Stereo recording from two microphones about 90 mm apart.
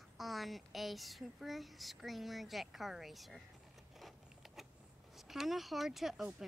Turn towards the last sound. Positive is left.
turn(degrees=-5)  # may be behind; listen again after turning